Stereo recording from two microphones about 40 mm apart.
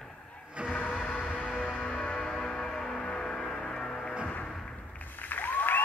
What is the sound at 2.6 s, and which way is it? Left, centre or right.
Music, centre.